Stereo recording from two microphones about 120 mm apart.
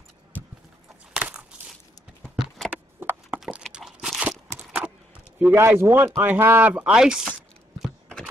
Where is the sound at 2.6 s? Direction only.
15° right (ahead or behind).